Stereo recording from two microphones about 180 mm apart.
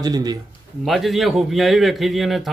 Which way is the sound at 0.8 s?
Centre (ahead or behind).